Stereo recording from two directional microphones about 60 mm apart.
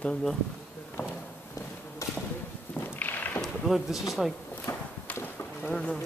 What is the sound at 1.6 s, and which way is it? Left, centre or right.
Insect, left.